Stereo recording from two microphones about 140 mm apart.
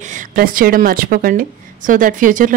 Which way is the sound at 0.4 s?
85° right.